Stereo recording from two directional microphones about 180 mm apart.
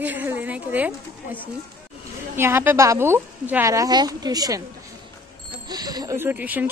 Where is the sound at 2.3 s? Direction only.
15° right (ahead or behind).